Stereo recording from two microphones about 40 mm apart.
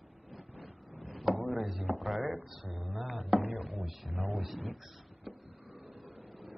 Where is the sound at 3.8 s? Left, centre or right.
Centre.